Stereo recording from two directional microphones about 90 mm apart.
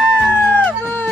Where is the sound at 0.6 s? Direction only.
20° left (ahead or behind).